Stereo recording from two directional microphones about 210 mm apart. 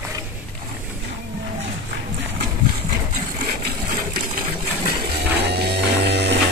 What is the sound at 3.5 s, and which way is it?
Water, 45° right (ahead or behind).